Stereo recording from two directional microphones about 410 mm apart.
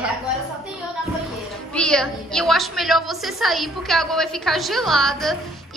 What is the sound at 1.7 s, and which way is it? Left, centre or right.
A woman's voice, centre.